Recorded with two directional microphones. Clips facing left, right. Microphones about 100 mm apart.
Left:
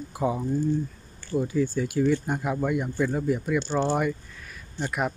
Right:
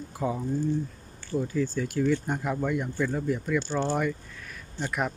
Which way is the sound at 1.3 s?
15° left (ahead or behind).